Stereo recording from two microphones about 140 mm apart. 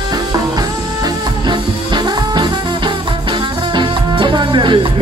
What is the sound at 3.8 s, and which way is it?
Music, 35° right (ahead or behind).